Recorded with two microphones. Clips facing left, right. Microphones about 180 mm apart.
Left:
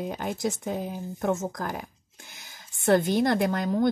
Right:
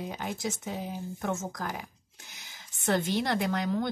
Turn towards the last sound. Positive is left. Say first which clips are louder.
# left 5 dB
turn(degrees=50)  # may be behind; listen again after turning